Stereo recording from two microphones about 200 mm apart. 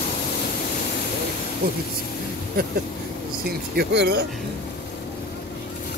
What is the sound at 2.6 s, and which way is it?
Speech, 50° right (ahead or behind).